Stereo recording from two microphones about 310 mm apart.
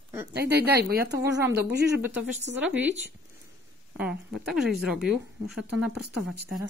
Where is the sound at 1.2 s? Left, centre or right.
Centre.